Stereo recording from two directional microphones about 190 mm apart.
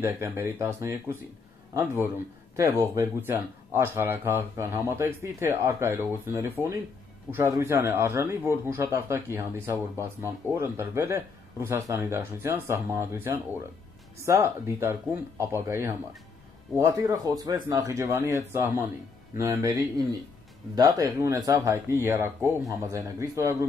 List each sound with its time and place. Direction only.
0.0 s speech: 15° right (ahead or behind)